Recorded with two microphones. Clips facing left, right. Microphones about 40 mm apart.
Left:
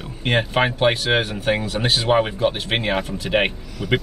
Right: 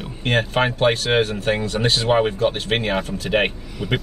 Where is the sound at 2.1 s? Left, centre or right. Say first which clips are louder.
Even; centre.